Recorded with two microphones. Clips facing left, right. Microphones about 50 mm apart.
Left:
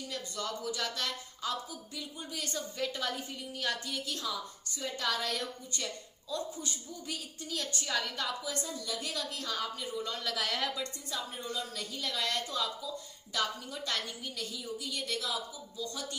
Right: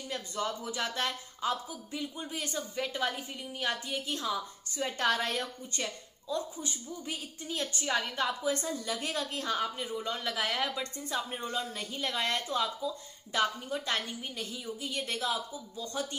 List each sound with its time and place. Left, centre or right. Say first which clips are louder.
0.1 s a woman's voice: right 5 dB; right
4.8 s a woman's voice: right 4 dB; right